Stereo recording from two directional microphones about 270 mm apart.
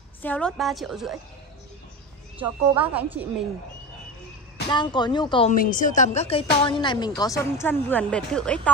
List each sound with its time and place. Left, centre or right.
0.2 s a woman's voice: centre
2.4 s a woman's voice: centre
4.6 s a woman's voice: centre
5.5 s a woman's voice: left; by 8.7 s centre